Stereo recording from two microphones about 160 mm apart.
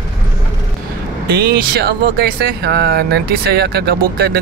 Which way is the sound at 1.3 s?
70° right (ahead or behind).